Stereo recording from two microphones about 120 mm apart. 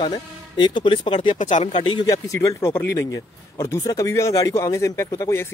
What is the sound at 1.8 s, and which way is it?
Speech, 40° left (ahead or behind).